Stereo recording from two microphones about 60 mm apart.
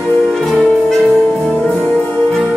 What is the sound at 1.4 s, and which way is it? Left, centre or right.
Music, left.